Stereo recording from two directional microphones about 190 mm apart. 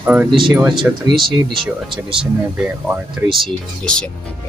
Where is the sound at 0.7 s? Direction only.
25° right (ahead or behind).